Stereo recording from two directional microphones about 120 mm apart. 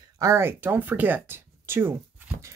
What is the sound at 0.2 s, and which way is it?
Speech, 20° right (ahead or behind).